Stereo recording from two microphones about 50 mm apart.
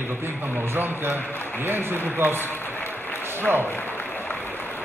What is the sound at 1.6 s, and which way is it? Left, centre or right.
Speech, right.